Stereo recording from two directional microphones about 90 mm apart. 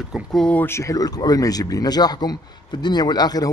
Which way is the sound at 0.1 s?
5° left (ahead or behind).